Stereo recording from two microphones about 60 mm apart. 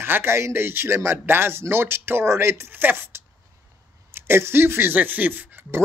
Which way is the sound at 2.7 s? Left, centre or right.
Right.